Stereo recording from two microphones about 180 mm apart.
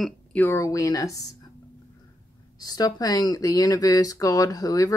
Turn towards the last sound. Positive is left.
turn(degrees=20)  # may be behind; listen again after turning